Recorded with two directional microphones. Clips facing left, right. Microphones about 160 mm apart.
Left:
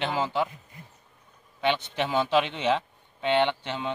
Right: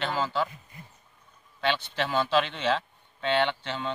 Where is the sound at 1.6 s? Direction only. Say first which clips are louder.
Left 2 dB; 15° left (ahead or behind).